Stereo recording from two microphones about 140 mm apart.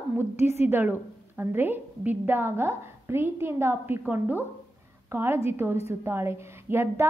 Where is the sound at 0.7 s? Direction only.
15° right (ahead or behind).